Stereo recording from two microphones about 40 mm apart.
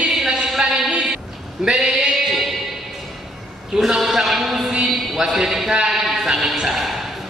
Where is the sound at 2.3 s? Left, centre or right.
Centre.